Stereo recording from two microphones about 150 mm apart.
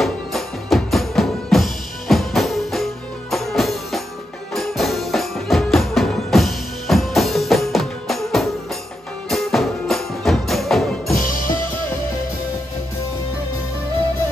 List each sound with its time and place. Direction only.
0.0 s music: centre (ahead or behind)
11.1 s music: 65° left (ahead or behind)